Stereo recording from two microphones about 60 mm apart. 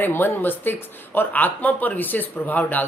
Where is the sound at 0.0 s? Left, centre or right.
Left.